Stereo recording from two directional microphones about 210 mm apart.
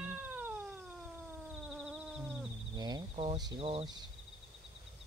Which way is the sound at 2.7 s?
20° right (ahead or behind).